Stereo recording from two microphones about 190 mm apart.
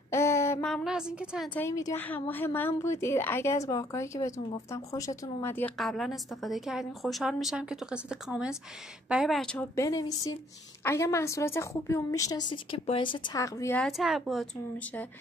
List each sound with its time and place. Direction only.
0.1 s a sound: 15° left (ahead or behind)
0.7 s a woman's voice: centre (ahead or behind)
1.5 s a woman's voice: 15° left (ahead or behind)
5.8 s a woman's voice: centre (ahead or behind)
9.8 s a woman's voice: 20° left (ahead or behind)
13.7 s a woman's voice: centre (ahead or behind)